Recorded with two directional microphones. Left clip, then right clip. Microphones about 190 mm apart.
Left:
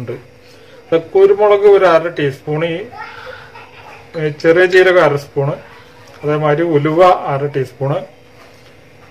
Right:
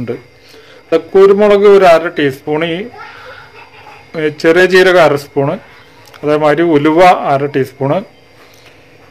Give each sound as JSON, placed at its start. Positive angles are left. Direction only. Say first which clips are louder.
{"t": 0.8, "sound": "a man's voice", "louder": "right 3 dB", "side_deg": -65}
{"t": 4.1, "sound": "a man's voice", "louder": "right 2 dB", "side_deg": -60}